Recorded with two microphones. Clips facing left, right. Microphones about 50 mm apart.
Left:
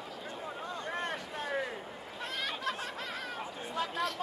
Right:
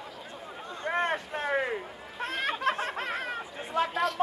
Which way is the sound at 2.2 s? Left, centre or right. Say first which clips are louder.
Right 7 dB; right.